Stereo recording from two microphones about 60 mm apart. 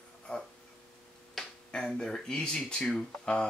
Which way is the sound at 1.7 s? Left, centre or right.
Centre.